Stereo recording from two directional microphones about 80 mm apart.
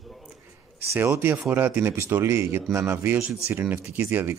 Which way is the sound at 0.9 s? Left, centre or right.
Right.